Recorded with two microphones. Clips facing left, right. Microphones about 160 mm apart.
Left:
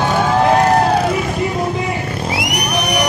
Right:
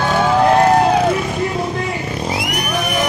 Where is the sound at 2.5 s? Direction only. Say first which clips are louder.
Left 1 dB; 20° left (ahead or behind).